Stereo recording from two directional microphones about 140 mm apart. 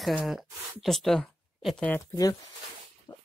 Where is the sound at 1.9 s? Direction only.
20° left (ahead or behind).